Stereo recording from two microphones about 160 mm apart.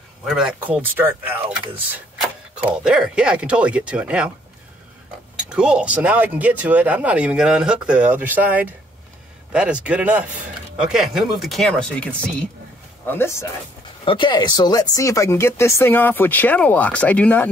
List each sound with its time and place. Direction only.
0.2 s speech: 5° right (ahead or behind)
5.5 s speech: 5° right (ahead or behind); by 13.5 s 15° left (ahead or behind)
14.0 s speech: 30° left (ahead or behind); by 17.5 s 10° left (ahead or behind)